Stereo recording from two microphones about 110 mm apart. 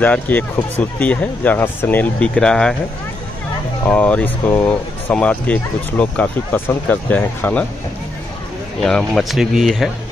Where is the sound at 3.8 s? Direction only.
15° left (ahead or behind).